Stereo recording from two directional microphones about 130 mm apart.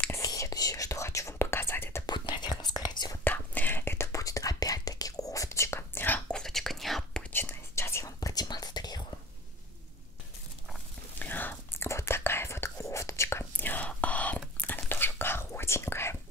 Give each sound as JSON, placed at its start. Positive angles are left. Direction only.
{"t": 0.1, "sound": "whispering", "side_deg": 25}
{"t": 2.0, "sound": "whispering", "side_deg": 35}
{"t": 3.3, "sound": "whispering", "side_deg": 15}
{"t": 7.3, "sound": "whispering", "side_deg": 15}
{"t": 11.1, "sound": "whispering", "side_deg": 15}